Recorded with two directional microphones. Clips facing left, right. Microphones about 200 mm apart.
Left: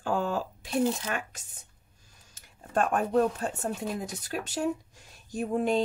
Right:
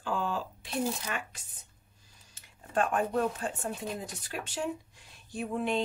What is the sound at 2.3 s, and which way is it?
A woman's voice, 45° left (ahead or behind).